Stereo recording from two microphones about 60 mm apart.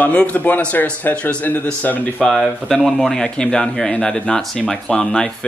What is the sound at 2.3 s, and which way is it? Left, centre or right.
Speech, centre.